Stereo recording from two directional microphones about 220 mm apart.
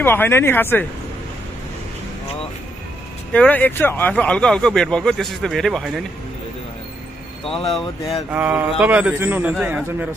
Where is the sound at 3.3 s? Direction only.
5° left (ahead or behind).